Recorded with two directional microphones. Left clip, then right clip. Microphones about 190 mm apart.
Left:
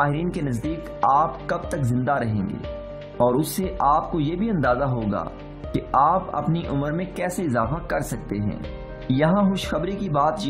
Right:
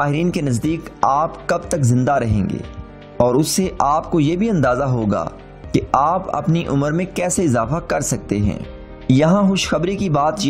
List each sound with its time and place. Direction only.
0.0 s a man's voice: 35° right (ahead or behind)